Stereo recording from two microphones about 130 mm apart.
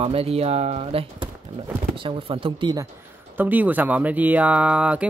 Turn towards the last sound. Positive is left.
turn(degrees=-10)  # may be behind; listen again after turning